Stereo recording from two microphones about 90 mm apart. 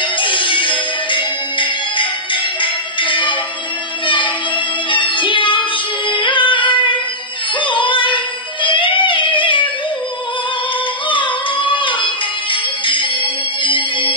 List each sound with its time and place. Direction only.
0.0 s music: 70° left (ahead or behind)
4.0 s child singing: 65° left (ahead or behind)
4.8 s music: 65° left (ahead or behind)
11.1 s music: 65° left (ahead or behind)